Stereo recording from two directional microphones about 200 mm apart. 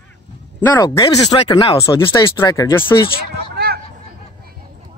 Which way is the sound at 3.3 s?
50° right (ahead or behind).